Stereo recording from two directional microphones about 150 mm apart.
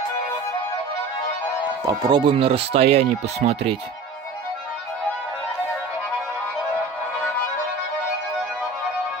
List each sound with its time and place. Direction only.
2.0 s speech: 30° right (ahead or behind)